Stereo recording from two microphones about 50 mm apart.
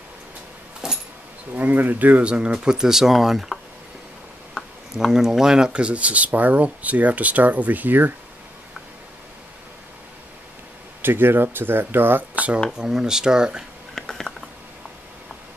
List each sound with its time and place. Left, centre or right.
0.8 s a sound: centre
1.5 s speech: right; by 3.5 s centre
4.9 s speech: centre; by 8.1 s right
11.0 s speech: right
12.7 s speech: centre
13.9 s a sound: centre